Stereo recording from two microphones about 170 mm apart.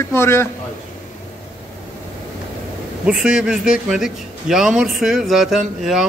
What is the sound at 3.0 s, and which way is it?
A man's voice, 5° right (ahead or behind).